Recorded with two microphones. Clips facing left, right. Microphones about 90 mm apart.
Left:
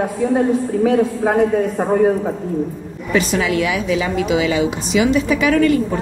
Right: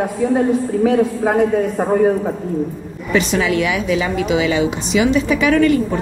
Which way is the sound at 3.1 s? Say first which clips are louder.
Right 1 dB; 30° right (ahead or behind).